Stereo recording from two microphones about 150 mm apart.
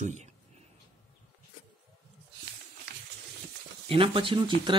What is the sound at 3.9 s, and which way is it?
Speech, 35° right (ahead or behind).